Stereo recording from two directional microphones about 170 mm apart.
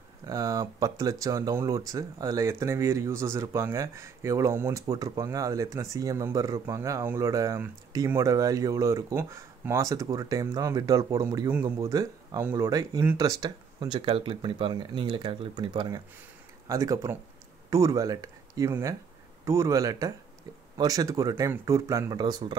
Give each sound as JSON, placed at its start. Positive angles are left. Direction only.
{"t": 0.3, "sound": "speech", "side_deg": -20}